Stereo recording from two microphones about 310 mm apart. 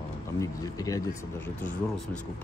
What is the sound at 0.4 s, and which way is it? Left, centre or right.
Speech, centre.